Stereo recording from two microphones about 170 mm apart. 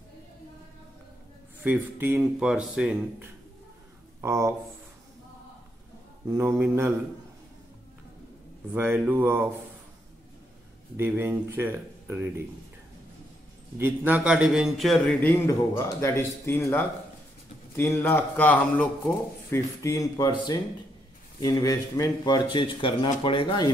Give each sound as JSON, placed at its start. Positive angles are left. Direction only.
{"t": 1.6, "sound": "speech", "side_deg": -10}
{"t": 6.2, "sound": "speech", "side_deg": -15}
{"t": 8.7, "sound": "speech", "side_deg": -10}
{"t": 11.0, "sound": "speech", "side_deg": -10}
{"t": 13.7, "sound": "a man's voice", "side_deg": -10}
{"t": 15.2, "sound": "a man's voice", "side_deg": 15}